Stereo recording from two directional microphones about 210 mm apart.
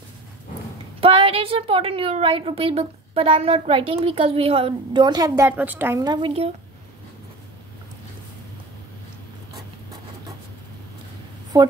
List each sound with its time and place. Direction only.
1.0 s a woman's voice: 25° right (ahead or behind)